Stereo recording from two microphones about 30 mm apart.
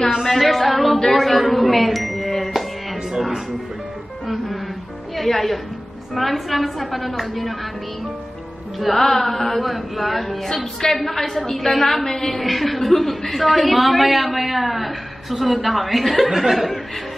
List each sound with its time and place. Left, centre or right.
0.2 s a man's voice: centre
2.3 s music: centre
5.1 s a man's voice: centre
8.7 s music: centre
9.0 s a woman's voice: centre
12.4 s a man's voice: centre